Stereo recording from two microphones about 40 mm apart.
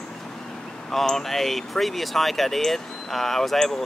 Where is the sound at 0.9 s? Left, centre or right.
Centre.